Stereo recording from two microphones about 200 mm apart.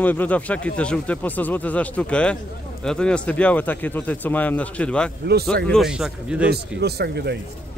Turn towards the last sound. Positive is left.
turn(degrees=-55)  # may be behind; listen again after turning